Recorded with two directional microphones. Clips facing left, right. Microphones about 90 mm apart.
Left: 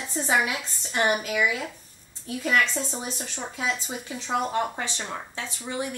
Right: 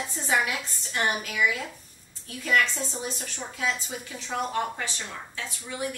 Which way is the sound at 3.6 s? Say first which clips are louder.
Even; 25° left (ahead or behind).